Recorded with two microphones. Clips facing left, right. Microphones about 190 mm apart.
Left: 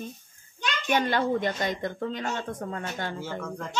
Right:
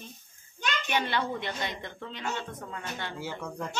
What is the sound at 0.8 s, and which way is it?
Speech, 45° left (ahead or behind).